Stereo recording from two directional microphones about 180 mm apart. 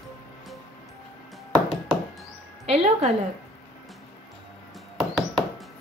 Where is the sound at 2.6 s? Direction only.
35° right (ahead or behind).